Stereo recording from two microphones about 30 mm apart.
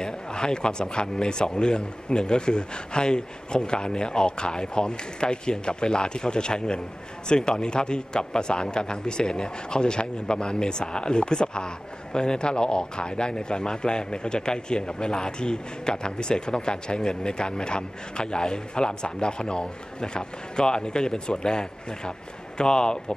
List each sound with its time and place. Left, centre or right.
0.0 s a man's voice: left
22.6 s a man's voice: left